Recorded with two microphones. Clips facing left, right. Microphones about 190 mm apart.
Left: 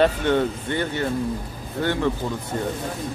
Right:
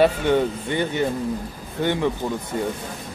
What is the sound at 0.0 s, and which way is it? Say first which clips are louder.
Speech: right 1 dB; 10° right (ahead or behind).